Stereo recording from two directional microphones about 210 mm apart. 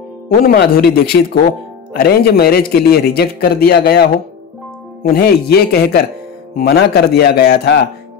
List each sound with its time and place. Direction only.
0.4 s a man's voice: 45° left (ahead or behind)